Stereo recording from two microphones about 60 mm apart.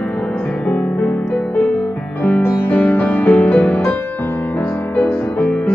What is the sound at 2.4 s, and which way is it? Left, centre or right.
Music, left.